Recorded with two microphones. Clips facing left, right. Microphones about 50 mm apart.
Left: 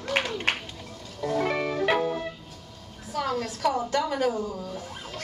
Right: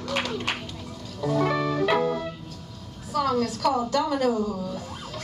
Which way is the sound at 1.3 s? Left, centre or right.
Centre.